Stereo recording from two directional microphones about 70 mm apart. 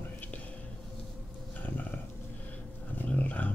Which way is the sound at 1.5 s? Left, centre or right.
Left.